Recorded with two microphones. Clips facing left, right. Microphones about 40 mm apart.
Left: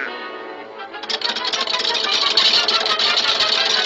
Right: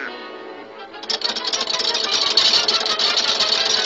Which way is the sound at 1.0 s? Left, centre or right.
Left.